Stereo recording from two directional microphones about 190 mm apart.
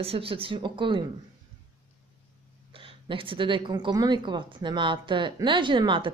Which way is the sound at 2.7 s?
30° right (ahead or behind).